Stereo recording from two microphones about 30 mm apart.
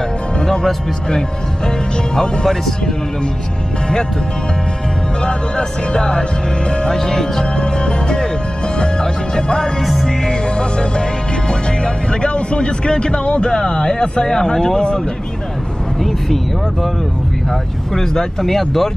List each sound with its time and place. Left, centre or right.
2.1 s speech: centre
5.2 s speech: left
7.5 s music: left
8.7 s speech: left
9.8 s music: centre
10.0 s music: left
14.2 s speech: left
16.0 s speech: centre
18.4 s speech: centre